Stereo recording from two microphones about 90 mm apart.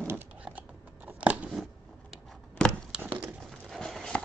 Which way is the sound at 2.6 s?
10° left (ahead or behind).